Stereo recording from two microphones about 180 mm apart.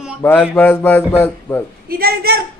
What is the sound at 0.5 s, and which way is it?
Speech, 10° left (ahead or behind).